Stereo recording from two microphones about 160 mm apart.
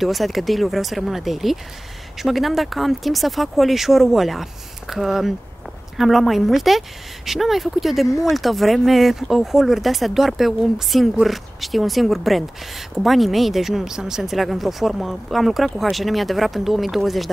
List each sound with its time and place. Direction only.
0.0 s speech: centre (ahead or behind)